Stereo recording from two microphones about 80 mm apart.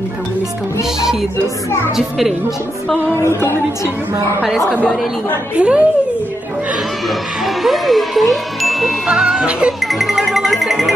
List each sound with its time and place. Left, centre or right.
2.0 s speech: centre
3.2 s music: left
4.4 s a woman's voice: centre
7.4 s ding: centre
9.8 s music: centre